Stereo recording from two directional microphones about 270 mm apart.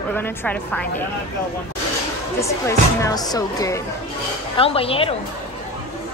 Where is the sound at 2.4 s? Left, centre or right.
Centre.